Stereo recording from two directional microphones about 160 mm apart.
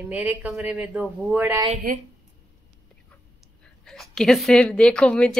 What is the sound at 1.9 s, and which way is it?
Speech, 60° right (ahead or behind).